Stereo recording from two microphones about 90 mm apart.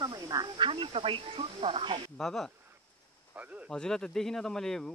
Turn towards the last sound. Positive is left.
turn(degrees=5)  # may be behind; listen again after turning